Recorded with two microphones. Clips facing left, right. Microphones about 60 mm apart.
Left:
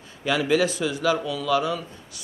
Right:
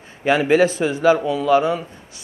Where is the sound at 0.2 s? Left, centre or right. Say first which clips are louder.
Right 6 dB; right.